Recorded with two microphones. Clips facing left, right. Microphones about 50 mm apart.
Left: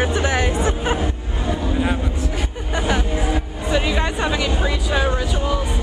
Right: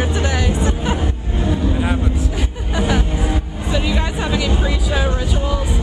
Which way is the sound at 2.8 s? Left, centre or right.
Centre.